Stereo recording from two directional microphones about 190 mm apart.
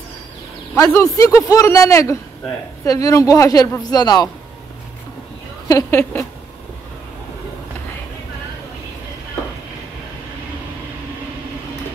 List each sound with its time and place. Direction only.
0.9 s a man's voice: 15° left (ahead or behind)
5.7 s a man's voice: 15° left (ahead or behind)